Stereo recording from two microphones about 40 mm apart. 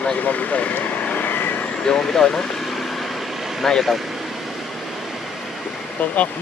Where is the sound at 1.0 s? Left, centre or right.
Left.